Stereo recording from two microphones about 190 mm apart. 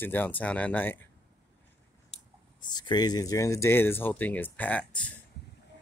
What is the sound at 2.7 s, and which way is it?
Speech, 20° left (ahead or behind).